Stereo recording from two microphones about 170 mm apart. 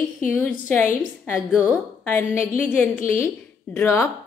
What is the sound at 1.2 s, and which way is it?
A woman's voice, 15° left (ahead or behind).